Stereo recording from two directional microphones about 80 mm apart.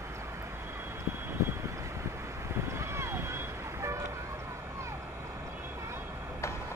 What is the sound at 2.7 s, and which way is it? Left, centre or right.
Vehicle, right.